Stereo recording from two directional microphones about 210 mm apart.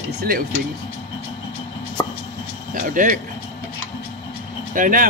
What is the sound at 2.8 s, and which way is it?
Speech, 40° right (ahead or behind).